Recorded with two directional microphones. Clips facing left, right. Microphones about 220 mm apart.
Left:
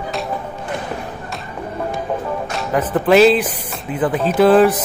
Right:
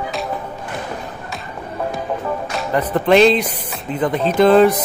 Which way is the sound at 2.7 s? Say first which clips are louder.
Even; 5° left (ahead or behind).